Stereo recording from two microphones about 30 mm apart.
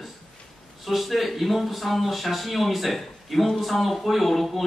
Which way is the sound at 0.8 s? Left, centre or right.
Centre.